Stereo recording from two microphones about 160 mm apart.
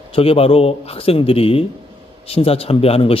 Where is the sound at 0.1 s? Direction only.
35° left (ahead or behind).